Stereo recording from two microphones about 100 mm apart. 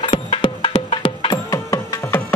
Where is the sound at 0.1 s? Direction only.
65° left (ahead or behind).